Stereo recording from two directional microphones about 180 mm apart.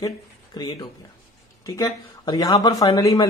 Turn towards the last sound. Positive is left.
turn(degrees=20)  # may be behind; listen again after turning